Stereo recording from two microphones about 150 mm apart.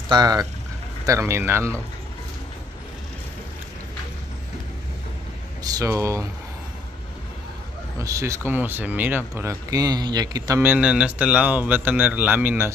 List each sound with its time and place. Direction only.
0.1 s a man's voice: 25° right (ahead or behind)
5.6 s speech: 25° right (ahead or behind)
8.0 s a man's voice: 20° right (ahead or behind)
10.6 s a man's voice: 10° right (ahead or behind)